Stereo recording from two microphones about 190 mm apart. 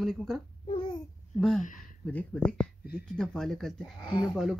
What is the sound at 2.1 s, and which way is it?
Speech, 5° left (ahead or behind).